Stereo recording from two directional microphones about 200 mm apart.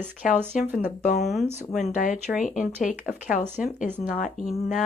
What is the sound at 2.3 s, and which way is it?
Speech, 5° right (ahead or behind).